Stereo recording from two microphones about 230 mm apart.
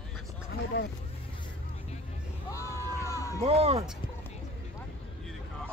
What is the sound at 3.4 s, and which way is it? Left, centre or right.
Speech, right.